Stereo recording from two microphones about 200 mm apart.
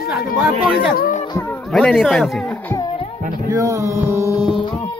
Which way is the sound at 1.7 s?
5° left (ahead or behind).